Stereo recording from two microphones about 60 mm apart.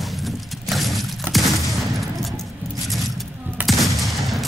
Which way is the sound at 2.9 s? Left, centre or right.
Centre.